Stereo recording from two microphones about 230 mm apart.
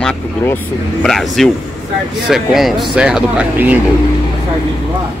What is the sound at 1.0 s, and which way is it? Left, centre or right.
Speech, centre.